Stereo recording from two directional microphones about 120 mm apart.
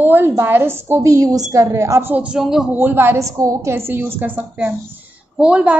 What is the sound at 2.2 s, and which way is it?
Speech, 5° right (ahead or behind).